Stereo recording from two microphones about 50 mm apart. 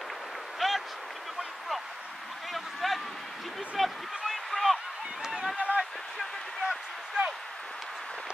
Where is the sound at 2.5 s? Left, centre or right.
Centre.